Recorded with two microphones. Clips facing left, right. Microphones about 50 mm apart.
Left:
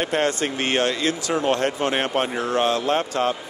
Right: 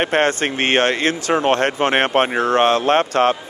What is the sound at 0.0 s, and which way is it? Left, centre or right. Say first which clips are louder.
Speech: right 5 dB; right.